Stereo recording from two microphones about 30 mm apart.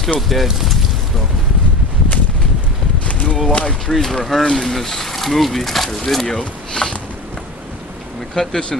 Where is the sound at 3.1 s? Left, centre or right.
Left.